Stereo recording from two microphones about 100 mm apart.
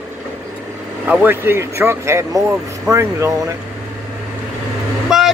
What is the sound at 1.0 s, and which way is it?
Speech, 20° right (ahead or behind).